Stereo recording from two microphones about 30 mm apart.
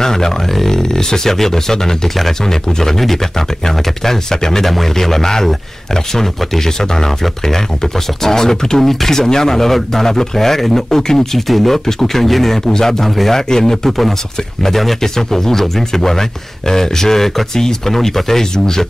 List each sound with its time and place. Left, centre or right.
0.0 s a sound: centre
0.5 s speech: centre
4.6 s speech: centre